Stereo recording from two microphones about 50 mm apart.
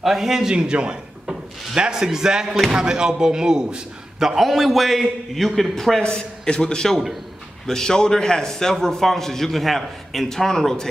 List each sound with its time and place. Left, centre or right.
0.0 s a man's voice: centre
0.6 s a man's voice: right
4.4 s a man's voice: centre